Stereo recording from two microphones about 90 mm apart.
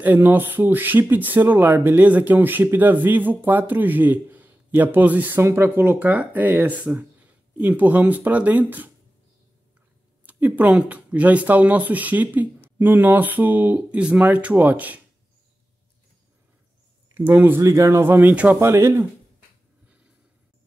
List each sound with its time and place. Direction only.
0.0 s speech: 20° right (ahead or behind)
10.2 s speech: 20° right (ahead or behind)
17.1 s speech: 20° right (ahead or behind)
17.6 s a man's voice: 35° right (ahead or behind); by 18.6 s 15° right (ahead or behind)
18.6 s speech: 30° right (ahead or behind)